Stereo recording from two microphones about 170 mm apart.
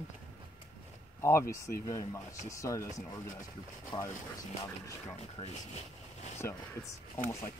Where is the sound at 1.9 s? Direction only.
20° left (ahead or behind).